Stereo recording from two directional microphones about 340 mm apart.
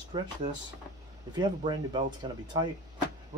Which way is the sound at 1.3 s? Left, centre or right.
Centre.